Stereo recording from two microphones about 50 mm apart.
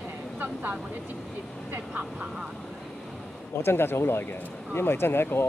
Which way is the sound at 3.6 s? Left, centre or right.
Left.